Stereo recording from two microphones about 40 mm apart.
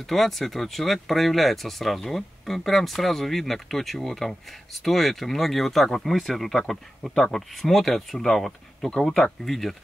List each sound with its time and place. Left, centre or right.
0.0 s speech: centre